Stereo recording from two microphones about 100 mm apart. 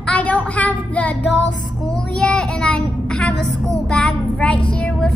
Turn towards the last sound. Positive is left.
turn(degrees=10)  # may be behind; listen again after turning